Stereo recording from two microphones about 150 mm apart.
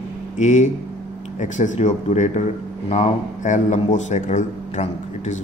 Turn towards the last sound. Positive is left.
turn(degrees=55)  # may be behind; listen again after turning